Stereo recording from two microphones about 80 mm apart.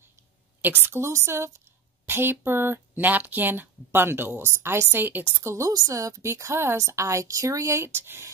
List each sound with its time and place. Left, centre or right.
0.6 s a woman's voice: right
5.3 s a woman's voice: right